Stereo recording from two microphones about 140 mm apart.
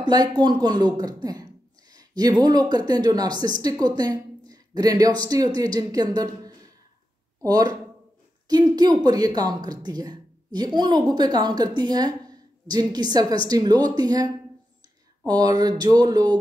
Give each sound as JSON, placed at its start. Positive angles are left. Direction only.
{"t": 0.0, "sound": "speech", "side_deg": -30}